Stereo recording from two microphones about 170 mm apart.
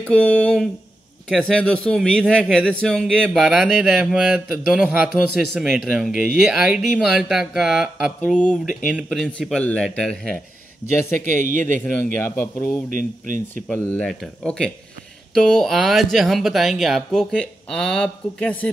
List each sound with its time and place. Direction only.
0.0 s a man's voice: 5° left (ahead or behind)
11.8 s speech: 10° left (ahead or behind)
12.9 s speech: 50° right (ahead or behind)
13.7 s a man's voice: 10° left (ahead or behind)